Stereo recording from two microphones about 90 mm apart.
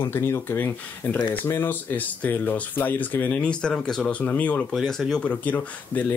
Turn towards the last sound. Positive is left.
turn(degrees=20)  # may be behind; listen again after turning